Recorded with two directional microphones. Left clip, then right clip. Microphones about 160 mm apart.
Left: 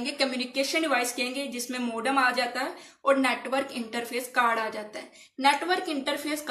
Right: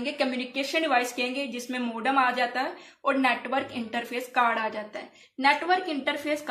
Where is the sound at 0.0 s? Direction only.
40° right (ahead or behind).